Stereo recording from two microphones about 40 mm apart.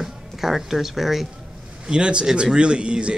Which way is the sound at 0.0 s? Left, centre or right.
Centre.